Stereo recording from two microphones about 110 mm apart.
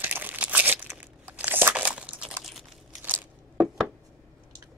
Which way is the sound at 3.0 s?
20° right (ahead or behind).